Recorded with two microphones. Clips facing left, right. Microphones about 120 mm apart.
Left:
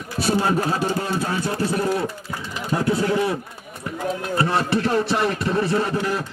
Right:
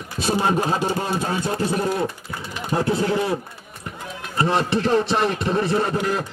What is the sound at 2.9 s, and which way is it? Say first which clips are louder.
Speech: left 1 dB; 25° right (ahead or behind).